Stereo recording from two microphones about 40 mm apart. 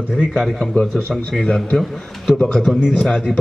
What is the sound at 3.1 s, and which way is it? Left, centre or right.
Speech, left.